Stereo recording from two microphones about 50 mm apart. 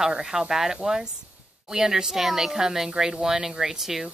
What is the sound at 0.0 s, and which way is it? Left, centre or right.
Speech, centre.